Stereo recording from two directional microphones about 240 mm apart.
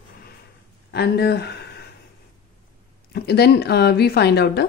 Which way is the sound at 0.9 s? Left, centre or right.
Left.